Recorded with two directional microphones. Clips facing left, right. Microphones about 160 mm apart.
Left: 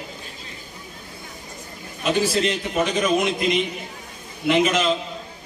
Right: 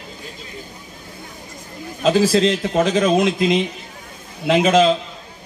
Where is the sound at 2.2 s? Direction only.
90° right.